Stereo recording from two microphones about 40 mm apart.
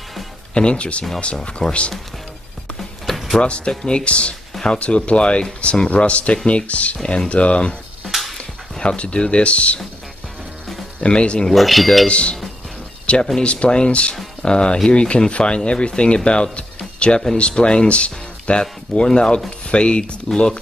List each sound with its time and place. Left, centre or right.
0.6 s speech: left
3.3 s speech: left
8.0 s a sound: centre
8.7 s speech: left
11.0 s speech: left
11.5 s speech: centre
12.1 s speech: left
16.5 s music: left
17.4 s speech: left